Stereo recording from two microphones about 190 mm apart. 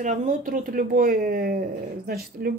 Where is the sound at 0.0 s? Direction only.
40° right (ahead or behind).